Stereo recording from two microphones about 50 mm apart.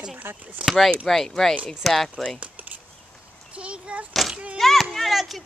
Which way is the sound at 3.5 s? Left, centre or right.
Right.